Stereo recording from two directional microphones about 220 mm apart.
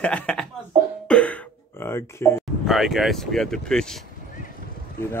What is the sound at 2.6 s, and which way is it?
Mantra, centre (ahead or behind).